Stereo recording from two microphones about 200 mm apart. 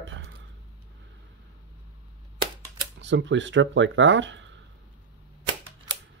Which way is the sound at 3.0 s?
65° right (ahead or behind).